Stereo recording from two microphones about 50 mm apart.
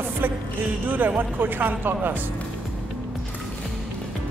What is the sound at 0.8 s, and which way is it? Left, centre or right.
Speech, right.